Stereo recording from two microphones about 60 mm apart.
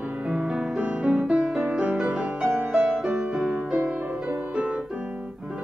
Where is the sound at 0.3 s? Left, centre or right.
Centre.